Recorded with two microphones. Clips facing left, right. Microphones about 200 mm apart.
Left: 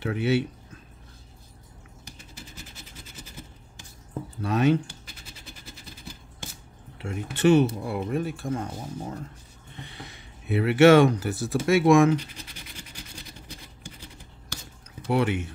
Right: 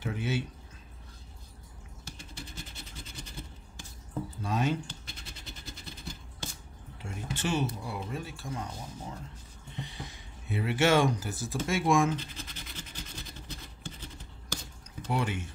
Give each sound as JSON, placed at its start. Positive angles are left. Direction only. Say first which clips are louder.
{"t": 0.0, "sound": "speech", "louder": "left 9 dB", "side_deg": 70}
{"t": 4.4, "sound": "speech", "louder": "left 9 dB", "side_deg": 65}
{"t": 7.0, "sound": "speech", "louder": "left 10 dB", "side_deg": 65}
{"t": 9.8, "sound": "speech", "louder": "left 1 dB", "side_deg": 65}
{"t": 12.2, "sound": "scratch", "louder": "left 2 dB", "side_deg": 15}
{"t": 15.0, "sound": "speech", "louder": "left 8 dB", "side_deg": 65}